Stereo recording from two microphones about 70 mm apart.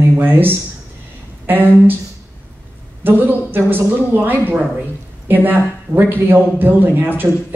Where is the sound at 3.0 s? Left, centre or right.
Right.